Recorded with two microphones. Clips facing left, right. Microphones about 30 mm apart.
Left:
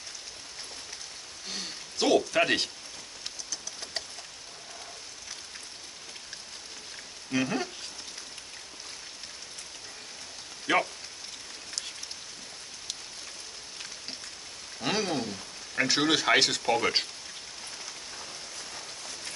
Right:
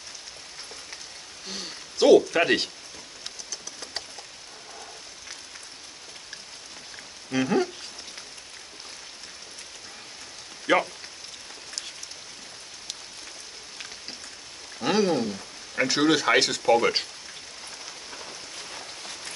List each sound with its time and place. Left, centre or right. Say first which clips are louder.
1.5 s speech: right 1 dB; centre
7.2 s speech: right 5 dB; centre
10.7 s speech: right 4 dB; centre
14.8 s a sound: right 6 dB; centre
18.1 s rain on surface: right 2 dB; right